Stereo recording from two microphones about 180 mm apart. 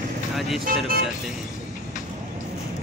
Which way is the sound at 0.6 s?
50° right (ahead or behind).